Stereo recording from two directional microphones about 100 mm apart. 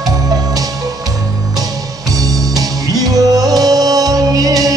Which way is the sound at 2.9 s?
40° right (ahead or behind).